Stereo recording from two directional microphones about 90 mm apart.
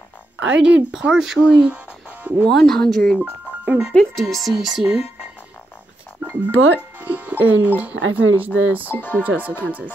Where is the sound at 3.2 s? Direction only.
15° right (ahead or behind).